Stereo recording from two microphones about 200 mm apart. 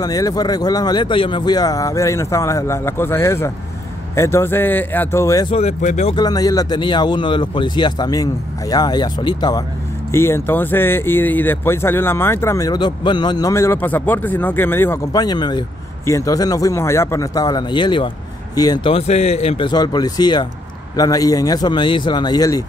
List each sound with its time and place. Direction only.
0.0 s speech: 20° left (ahead or behind)
5.5 s speech: 30° left (ahead or behind)
6.1 s a man's voice: 20° left (ahead or behind)